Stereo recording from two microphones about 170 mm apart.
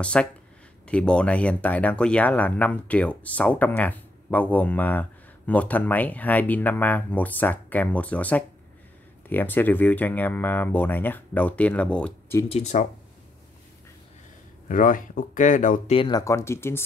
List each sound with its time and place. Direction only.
0.0 s speech: 5° left (ahead or behind)
12.4 s speech: 40° left (ahead or behind)
14.7 s speech: 50° left (ahead or behind)
15.9 s speech: 25° left (ahead or behind)